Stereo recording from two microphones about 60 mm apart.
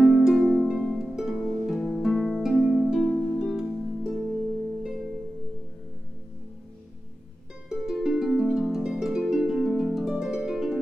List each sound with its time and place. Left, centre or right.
0.0 s harp: centre
1.8 s music: centre
2.0 s harp: centre
3.3 s music: centre
7.7 s harp: centre